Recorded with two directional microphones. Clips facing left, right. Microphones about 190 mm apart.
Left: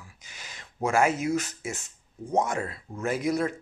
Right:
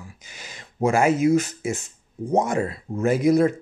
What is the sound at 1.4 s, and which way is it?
Speech, 20° right (ahead or behind).